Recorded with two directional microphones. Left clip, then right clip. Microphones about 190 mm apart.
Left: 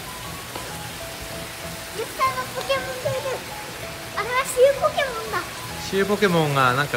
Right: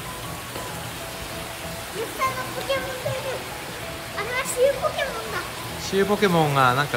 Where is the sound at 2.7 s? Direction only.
Centre (ahead or behind).